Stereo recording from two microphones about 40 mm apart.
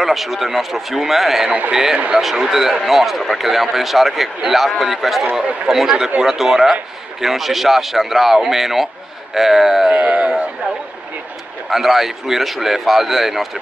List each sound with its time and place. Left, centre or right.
0.0 s a man's voice: centre
10.0 s speech: right
11.7 s a man's voice: centre